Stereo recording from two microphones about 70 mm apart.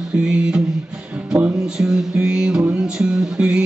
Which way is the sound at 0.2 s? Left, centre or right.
Centre.